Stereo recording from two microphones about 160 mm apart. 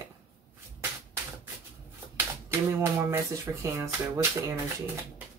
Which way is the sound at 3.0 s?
15° right (ahead or behind).